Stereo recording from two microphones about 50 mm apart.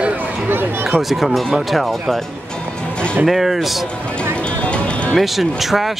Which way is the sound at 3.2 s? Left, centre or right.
Centre.